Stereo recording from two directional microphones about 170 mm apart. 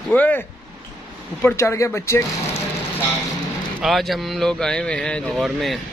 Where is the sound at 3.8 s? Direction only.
Centre (ahead or behind).